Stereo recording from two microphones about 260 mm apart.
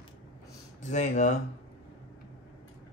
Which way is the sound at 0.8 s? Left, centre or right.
Left.